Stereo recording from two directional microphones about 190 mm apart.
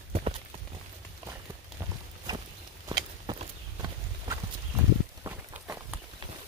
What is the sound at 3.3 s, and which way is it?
Clip-clop, 25° right (ahead or behind).